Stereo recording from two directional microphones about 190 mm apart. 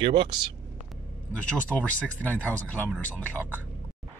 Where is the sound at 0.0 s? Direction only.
25° right (ahead or behind).